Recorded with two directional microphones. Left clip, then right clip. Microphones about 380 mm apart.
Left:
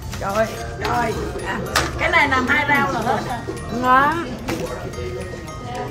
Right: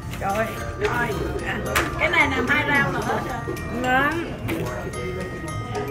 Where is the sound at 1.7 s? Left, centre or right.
Left.